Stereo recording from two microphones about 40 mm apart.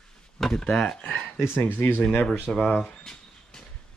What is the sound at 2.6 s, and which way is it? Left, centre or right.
Speech, centre.